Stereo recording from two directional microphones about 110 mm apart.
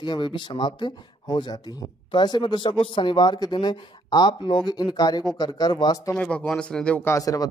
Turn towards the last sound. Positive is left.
turn(degrees=30)  # may be behind; listen again after turning